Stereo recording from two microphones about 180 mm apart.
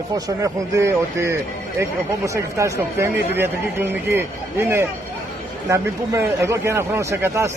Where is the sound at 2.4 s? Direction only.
15° right (ahead or behind).